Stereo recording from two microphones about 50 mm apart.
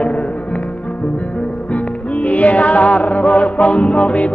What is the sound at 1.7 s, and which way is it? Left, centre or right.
Music, left.